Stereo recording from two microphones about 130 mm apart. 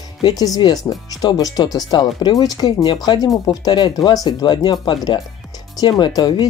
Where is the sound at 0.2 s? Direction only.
30° left (ahead or behind).